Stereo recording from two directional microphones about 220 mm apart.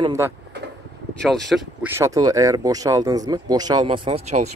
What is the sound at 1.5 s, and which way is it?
Speech, 10° right (ahead or behind).